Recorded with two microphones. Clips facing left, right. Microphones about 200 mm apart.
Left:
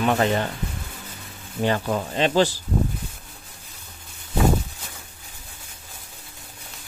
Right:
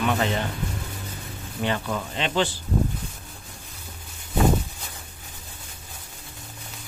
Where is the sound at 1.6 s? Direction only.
40° left (ahead or behind).